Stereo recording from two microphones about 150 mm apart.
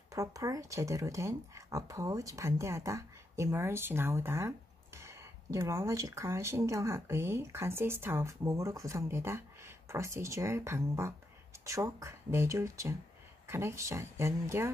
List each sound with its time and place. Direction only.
0.1 s speech: 20° right (ahead or behind)